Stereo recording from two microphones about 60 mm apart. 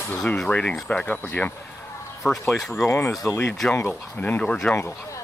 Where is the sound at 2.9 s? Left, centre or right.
Left.